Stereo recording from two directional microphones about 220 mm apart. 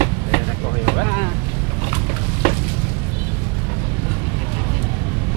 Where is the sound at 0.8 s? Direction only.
15° right (ahead or behind).